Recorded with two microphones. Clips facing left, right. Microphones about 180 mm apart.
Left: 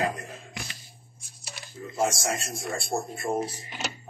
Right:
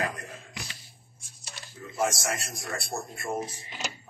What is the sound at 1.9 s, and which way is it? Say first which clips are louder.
A man's voice: left 2 dB; 25° left (ahead or behind).